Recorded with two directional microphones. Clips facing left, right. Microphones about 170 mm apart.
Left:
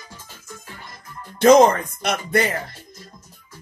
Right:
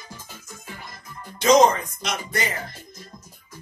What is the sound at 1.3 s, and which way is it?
Speech, 55° left (ahead or behind).